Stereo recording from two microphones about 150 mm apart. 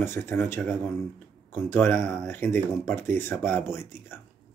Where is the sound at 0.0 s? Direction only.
15° left (ahead or behind).